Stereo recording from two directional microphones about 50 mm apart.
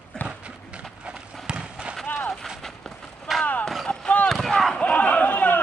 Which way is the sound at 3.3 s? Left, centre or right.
Centre.